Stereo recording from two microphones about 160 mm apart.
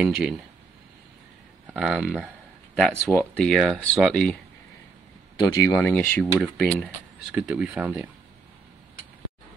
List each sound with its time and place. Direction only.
0.0 s speech: 5° right (ahead or behind)
1.8 s speech: 5° right (ahead or behind)
5.5 s speech: 20° left (ahead or behind)
5.9 s speech: 10° left (ahead or behind)
6.4 s speech: centre (ahead or behind)